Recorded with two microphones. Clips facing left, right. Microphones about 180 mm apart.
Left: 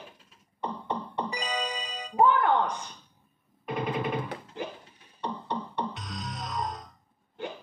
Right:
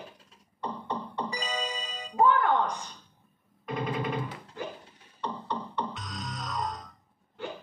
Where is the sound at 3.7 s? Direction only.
20° left (ahead or behind).